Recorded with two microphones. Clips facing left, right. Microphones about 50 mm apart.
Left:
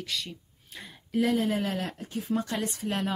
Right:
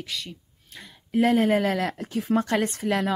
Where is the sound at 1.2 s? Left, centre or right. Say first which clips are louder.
Right 7 dB; right.